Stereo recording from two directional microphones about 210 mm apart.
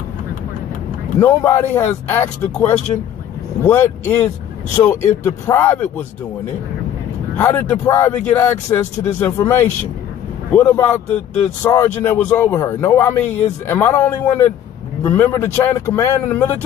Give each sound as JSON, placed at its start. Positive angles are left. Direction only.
{"t": 1.2, "sound": "a man's voice", "side_deg": 10}
{"t": 2.9, "sound": "speech", "side_deg": 20}
{"t": 3.6, "sound": "a man's voice", "side_deg": 10}
{"t": 7.3, "sound": "a man's voice", "side_deg": 10}